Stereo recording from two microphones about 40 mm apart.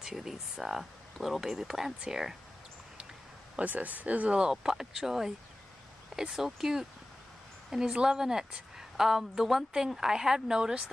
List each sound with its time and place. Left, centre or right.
0.0 s speech: centre
3.6 s speech: right
4.4 s speech: centre
7.9 s speech: centre